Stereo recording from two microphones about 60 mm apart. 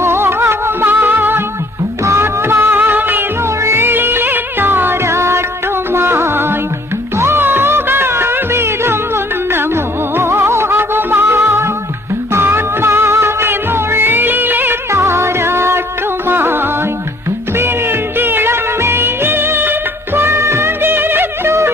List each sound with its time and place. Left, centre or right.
0.0 s music: right
14.9 s music: right
17.6 s music of bollywood: right